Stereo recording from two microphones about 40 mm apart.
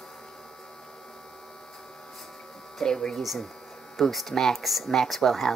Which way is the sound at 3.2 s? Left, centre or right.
Centre.